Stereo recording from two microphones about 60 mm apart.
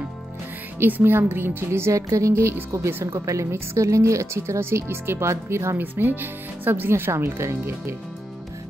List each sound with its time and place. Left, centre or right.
0.7 s speech: right
5.8 s speech: right